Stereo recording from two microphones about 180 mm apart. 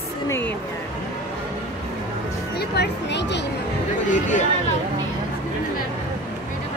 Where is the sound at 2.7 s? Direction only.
70° left (ahead or behind).